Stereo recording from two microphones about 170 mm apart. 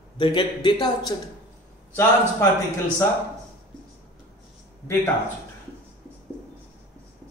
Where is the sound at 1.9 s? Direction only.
10° left (ahead or behind).